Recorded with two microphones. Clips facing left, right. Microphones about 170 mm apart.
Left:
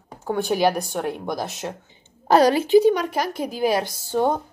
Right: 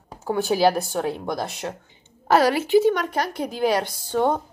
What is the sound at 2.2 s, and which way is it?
A woman's voice, 20° left (ahead or behind).